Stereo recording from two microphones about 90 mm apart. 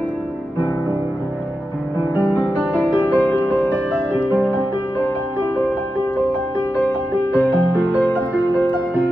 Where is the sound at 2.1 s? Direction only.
15° right (ahead or behind).